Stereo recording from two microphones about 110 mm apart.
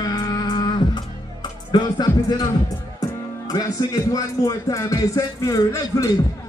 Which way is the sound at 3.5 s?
35° left (ahead or behind).